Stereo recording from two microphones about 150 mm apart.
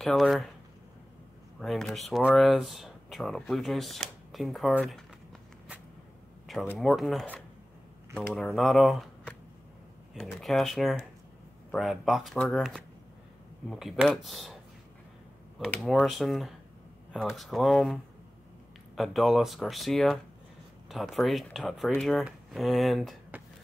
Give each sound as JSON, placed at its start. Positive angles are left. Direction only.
{"t": 0.0, "sound": "speech", "side_deg": 0}
{"t": 1.6, "sound": "speech", "side_deg": 0}
{"t": 6.8, "sound": "speech", "side_deg": 0}
{"t": 15.6, "sound": "speech", "side_deg": 0}
{"t": 18.9, "sound": "speech", "side_deg": 0}